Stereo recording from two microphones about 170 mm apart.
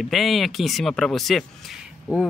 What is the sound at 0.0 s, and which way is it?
Speech, centre (ahead or behind).